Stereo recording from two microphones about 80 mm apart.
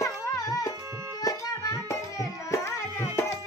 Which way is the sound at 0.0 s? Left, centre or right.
Left.